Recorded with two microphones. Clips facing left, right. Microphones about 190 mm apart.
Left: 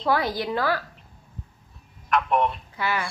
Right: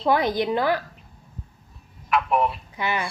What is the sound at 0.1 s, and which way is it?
Speech, 20° right (ahead or behind).